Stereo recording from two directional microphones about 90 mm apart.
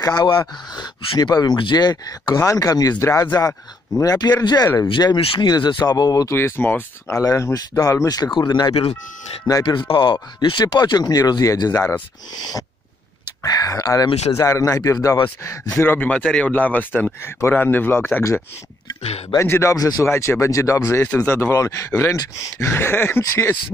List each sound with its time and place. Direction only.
0.0 s speech: 50° left (ahead or behind)
3.0 s speech: 30° left (ahead or behind)
5.4 s speech: 55° left (ahead or behind)
6.2 s speech: 30° left (ahead or behind); by 9.8 s 45° left (ahead or behind)
9.8 s speech: 60° left (ahead or behind)
11.7 s speech: 25° left (ahead or behind)
12.4 s speech: 45° left (ahead or behind)
15.8 s speech: 20° left (ahead or behind)
19.3 s speech: 30° left (ahead or behind)
19.7 s speech: 40° left (ahead or behind)